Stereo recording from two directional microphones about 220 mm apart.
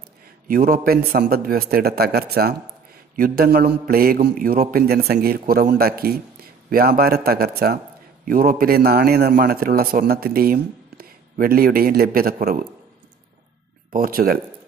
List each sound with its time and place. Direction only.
0.5 s a man's voice: 40° right (ahead or behind)
13.9 s a man's voice: 40° right (ahead or behind)